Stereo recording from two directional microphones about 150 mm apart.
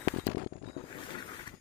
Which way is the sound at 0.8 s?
35° left (ahead or behind).